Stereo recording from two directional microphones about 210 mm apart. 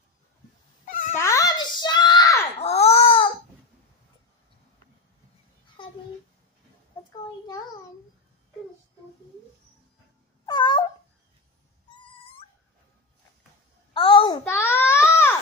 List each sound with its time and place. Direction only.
0.8 s cat: 35° left (ahead or behind)
1.1 s a sound: 15° left (ahead or behind)
2.6 s babbling: 30° left (ahead or behind)
5.8 s babbling: 25° left (ahead or behind)
10.4 s cat: 20° left (ahead or behind)
13.9 s a sound: 25° left (ahead or behind)
14.4 s baby cry: 10° left (ahead or behind)